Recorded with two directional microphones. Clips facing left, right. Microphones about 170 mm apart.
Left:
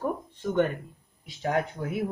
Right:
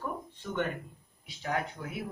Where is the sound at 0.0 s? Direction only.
45° left (ahead or behind).